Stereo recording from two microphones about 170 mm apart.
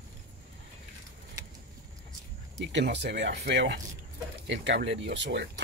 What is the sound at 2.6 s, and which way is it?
Speech, 85° right.